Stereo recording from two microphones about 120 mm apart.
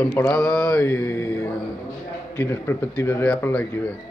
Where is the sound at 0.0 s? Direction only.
15° left (ahead or behind).